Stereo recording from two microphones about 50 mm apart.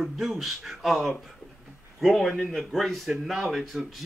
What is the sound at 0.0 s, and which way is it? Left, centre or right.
Speech, centre.